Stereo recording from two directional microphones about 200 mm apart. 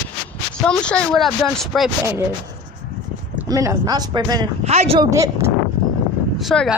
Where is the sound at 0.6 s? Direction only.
5° left (ahead or behind).